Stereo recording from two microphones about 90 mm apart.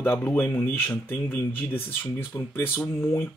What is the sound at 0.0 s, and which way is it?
Speech, 20° left (ahead or behind).